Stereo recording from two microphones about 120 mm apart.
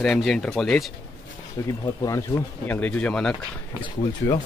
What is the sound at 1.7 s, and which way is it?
Speech, 30° left (ahead or behind).